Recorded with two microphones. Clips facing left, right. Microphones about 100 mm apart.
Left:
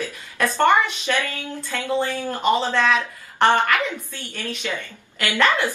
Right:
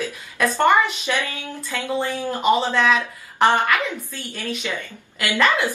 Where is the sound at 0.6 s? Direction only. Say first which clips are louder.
Even; 15° right (ahead or behind).